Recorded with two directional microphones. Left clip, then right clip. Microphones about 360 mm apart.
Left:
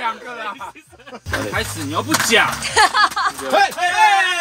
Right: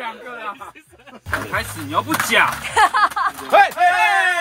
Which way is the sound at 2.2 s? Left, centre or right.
Centre.